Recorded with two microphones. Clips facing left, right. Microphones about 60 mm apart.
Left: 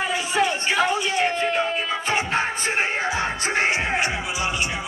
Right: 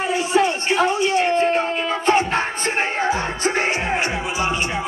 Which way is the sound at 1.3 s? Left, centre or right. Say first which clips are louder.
Right 4 dB; right.